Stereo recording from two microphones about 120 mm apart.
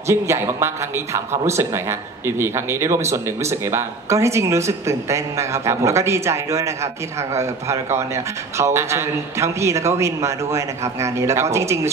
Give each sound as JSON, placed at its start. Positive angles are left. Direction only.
{"t": 0.0, "sound": "a man's voice", "side_deg": -25}